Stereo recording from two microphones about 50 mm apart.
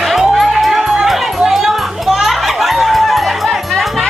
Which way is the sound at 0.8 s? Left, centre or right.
Centre.